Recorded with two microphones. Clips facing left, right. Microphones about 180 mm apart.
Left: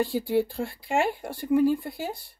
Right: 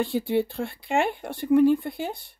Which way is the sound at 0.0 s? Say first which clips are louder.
Even; 10° left (ahead or behind).